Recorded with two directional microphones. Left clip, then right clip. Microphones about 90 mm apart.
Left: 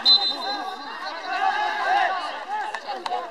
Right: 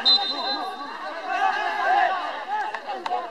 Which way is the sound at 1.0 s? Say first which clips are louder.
Left 2 dB; 45° left (ahead or behind).